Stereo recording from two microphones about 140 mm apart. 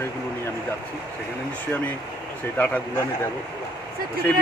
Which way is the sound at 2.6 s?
10° left (ahead or behind).